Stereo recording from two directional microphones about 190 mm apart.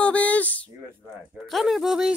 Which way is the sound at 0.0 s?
5° left (ahead or behind).